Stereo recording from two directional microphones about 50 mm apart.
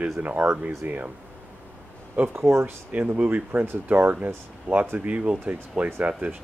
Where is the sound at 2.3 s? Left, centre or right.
Right.